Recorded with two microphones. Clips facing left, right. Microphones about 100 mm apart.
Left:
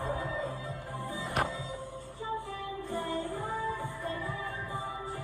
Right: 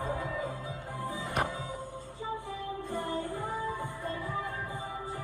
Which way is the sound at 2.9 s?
20° right (ahead or behind).